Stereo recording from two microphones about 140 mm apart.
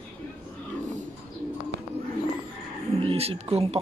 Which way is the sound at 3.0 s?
45° right (ahead or behind).